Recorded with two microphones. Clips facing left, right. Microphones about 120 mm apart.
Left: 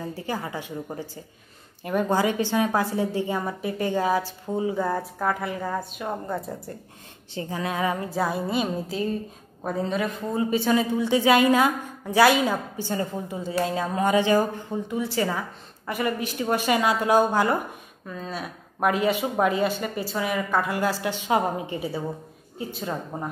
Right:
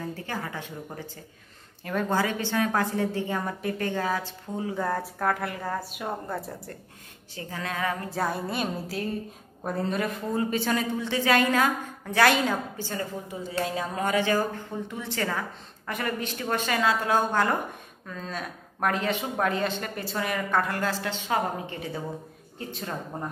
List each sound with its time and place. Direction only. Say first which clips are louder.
0.0 s a woman's voice: left 3 dB; 10° left (ahead or behind)
7.3 s a woman's voice: left 5 dB; 15° left (ahead or behind)
8.1 s music: left 3 dB; 5° left (ahead or behind)
9.6 s a woman's voice: left 2 dB; centre (ahead or behind)
22.6 s music: left 4 dB; 5° left (ahead or behind)